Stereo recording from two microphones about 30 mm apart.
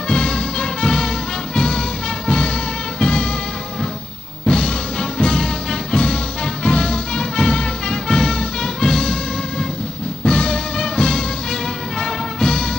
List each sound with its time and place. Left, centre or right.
0.1 s music: left
3.0 s music: left
4.5 s music: left
10.2 s music: left
12.4 s music: left